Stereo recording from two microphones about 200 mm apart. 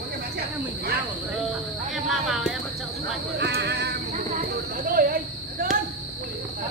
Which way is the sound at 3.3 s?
55° right (ahead or behind).